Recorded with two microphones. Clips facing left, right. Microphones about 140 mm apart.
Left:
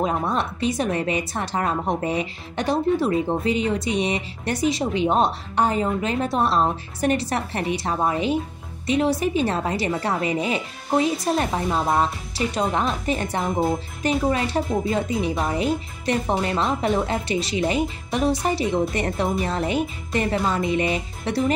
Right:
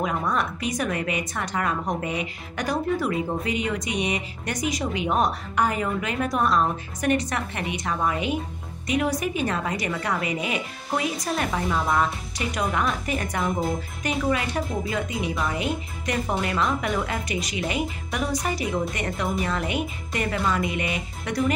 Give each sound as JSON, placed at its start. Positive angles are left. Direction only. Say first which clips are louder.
{"t": 0.0, "sound": "a woman's voice", "louder": "left 2 dB", "side_deg": 30}